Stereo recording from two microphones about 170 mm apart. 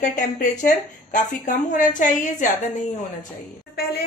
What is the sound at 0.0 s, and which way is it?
Speech, 45° left (ahead or behind).